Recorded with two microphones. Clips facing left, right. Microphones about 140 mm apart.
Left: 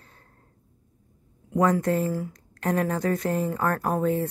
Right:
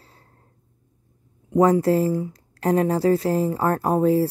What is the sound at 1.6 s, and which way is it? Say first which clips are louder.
Speech: right 5 dB; 35° right (ahead or behind).